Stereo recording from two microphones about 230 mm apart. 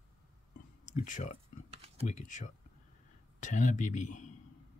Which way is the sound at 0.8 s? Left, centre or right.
Left.